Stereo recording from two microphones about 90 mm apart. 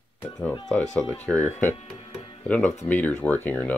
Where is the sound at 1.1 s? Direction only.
20° left (ahead or behind).